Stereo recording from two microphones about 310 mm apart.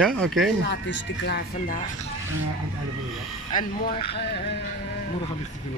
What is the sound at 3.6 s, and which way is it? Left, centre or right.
Speech, left.